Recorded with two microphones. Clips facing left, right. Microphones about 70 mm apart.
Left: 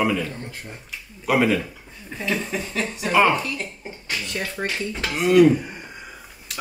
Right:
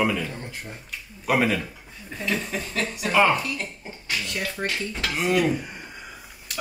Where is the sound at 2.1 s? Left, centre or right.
Left.